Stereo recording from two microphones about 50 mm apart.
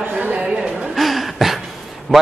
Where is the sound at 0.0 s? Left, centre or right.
Right.